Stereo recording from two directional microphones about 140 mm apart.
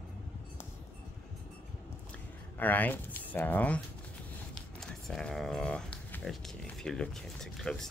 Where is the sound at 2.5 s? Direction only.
10° left (ahead or behind).